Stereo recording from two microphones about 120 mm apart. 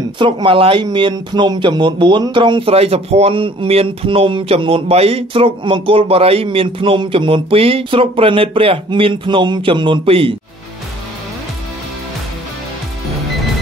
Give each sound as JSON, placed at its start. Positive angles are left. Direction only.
{"t": 0.2, "sound": "speech", "side_deg": -45}
{"t": 2.7, "sound": "speech", "side_deg": -55}